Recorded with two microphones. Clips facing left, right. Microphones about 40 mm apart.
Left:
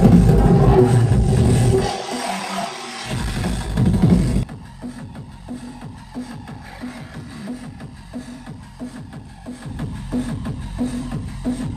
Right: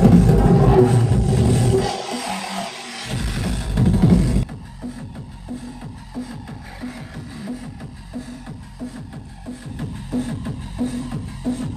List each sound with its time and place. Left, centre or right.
0.0 s music: centre
0.6 s vehicle: centre
1.7 s music: centre
6.8 s music: centre
9.9 s music: centre
11.4 s music: left